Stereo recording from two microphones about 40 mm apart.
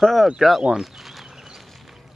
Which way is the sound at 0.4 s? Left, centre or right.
Centre.